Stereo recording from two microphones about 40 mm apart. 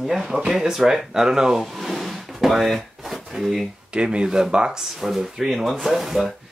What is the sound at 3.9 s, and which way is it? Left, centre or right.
Speech, right.